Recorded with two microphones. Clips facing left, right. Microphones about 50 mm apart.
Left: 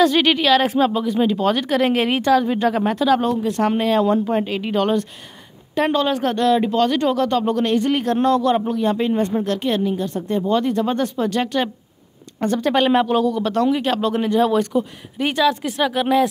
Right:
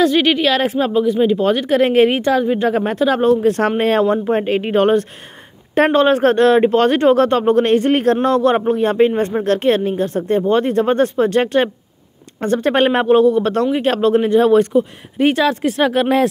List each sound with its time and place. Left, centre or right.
0.0 s a woman's voice: centre
2.7 s speech: right